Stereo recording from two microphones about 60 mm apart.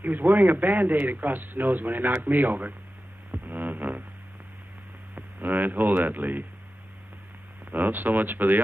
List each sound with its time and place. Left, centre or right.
0.0 s a man's voice: right
3.3 s music: right
5.1 s speech: right
7.7 s a man's voice: right